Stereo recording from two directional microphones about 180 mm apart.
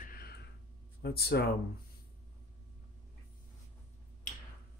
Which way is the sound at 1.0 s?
60° left (ahead or behind).